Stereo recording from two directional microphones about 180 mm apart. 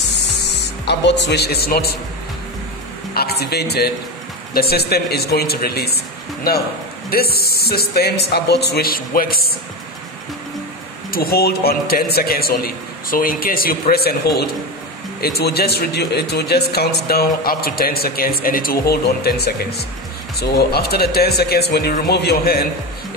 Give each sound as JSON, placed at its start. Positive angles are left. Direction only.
{"t": 0.5, "sound": "speech", "side_deg": 75}
{"t": 3.2, "sound": "speech", "side_deg": 60}
{"t": 7.1, "sound": "speech", "side_deg": 60}
{"t": 11.1, "sound": "speech", "side_deg": 55}